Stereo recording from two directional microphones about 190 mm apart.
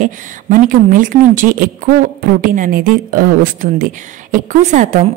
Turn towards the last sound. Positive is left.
turn(degrees=-40)  # may be behind; listen again after turning